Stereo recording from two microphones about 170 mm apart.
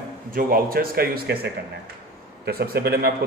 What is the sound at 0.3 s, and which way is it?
A man's voice, 60° right (ahead or behind).